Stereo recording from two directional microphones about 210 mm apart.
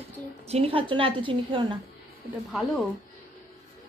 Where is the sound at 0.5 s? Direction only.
30° right (ahead or behind).